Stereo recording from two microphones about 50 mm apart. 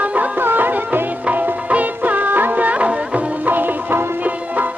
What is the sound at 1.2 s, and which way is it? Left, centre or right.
Music, right.